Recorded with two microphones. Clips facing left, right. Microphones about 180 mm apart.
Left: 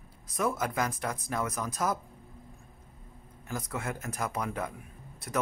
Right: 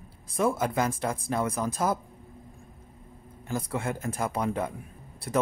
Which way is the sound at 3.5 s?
30° right (ahead or behind).